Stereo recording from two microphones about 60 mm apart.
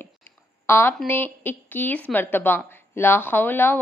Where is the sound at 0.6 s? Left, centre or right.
Left.